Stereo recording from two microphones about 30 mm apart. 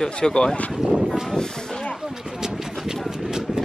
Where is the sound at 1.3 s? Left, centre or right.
Left.